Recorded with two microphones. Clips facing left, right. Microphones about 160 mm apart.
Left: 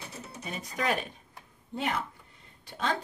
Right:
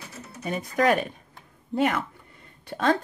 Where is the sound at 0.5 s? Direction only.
60° right (ahead or behind).